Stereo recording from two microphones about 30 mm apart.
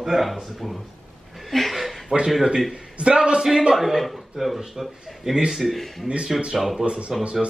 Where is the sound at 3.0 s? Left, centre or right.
Right.